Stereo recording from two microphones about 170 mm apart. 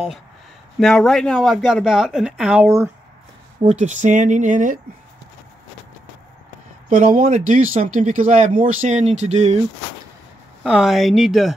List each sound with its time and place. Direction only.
0.7 s speech: centre (ahead or behind); by 2.9 s 15° right (ahead or behind)
3.6 s speech: 45° right (ahead or behind)
6.9 s speech: 45° right (ahead or behind)
10.6 s speech: 5° right (ahead or behind)